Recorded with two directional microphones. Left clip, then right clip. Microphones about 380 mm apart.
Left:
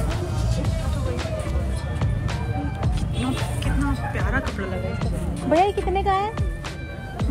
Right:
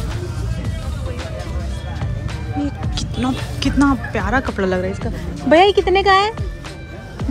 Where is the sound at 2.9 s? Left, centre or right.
Centre.